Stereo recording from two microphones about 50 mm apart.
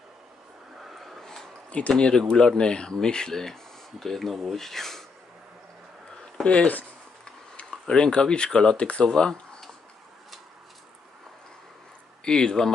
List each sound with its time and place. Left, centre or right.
0.8 s a sound: centre
1.7 s speech: left; by 5.0 s centre
6.4 s speech: left
12.3 s speech: centre